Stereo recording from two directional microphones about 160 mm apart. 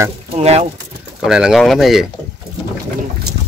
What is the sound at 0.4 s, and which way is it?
Speech, 40° right (ahead or behind).